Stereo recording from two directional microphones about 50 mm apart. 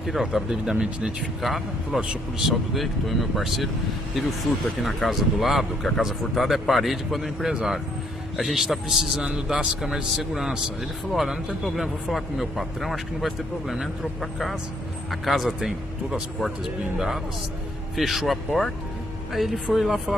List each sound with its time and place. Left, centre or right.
0.0 s a man's voice: centre
1.2 s speech: centre
2.0 s a man's voice: centre
2.7 s a man's voice: centre